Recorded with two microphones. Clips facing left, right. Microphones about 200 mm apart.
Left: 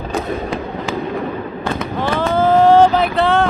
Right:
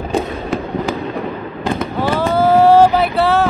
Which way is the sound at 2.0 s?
10° right (ahead or behind).